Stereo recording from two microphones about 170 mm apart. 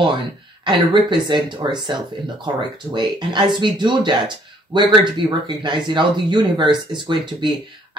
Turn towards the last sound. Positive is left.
turn(degrees=-25)  # may be behind; listen again after turning